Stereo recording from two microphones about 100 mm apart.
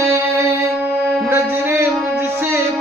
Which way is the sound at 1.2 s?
30° right (ahead or behind).